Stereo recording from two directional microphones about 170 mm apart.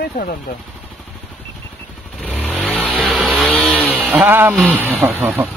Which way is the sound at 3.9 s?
10° right (ahead or behind).